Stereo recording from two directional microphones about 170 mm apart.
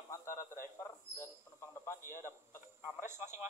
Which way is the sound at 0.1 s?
15° left (ahead or behind).